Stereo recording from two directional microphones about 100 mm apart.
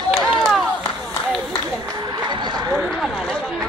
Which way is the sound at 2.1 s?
50° right (ahead or behind).